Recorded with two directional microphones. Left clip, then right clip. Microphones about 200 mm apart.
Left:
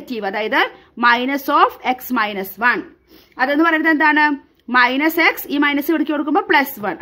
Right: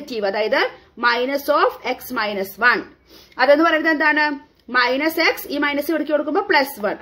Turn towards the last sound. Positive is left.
turn(degrees=45)  # may be behind; listen again after turning